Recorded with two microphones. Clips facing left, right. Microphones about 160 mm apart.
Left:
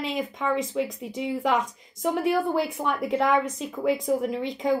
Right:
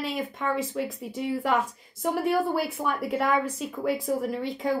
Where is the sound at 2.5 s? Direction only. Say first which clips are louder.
Left 2 dB; 5° right (ahead or behind).